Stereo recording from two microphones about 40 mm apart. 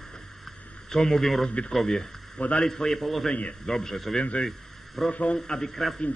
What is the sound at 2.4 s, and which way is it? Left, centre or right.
Speech, left.